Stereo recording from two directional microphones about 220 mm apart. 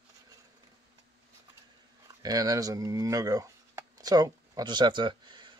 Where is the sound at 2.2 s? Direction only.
15° right (ahead or behind).